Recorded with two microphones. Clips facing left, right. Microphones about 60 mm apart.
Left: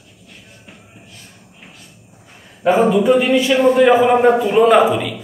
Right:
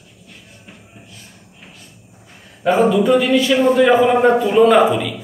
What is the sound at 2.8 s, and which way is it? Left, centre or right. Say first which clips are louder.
Speech: left 1 dB; left.